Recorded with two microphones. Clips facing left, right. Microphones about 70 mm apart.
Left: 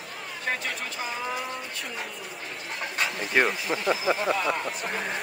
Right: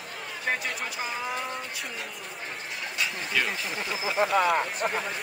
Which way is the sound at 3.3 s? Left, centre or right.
Left.